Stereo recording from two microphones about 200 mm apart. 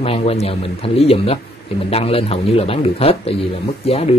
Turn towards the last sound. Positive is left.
turn(degrees=30)  # may be behind; listen again after turning